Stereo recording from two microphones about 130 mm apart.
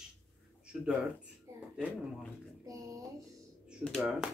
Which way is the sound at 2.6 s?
25° right (ahead or behind).